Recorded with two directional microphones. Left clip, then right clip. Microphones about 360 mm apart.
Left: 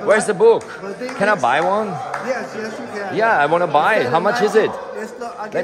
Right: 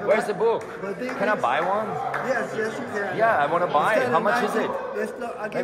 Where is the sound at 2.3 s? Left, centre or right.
Centre.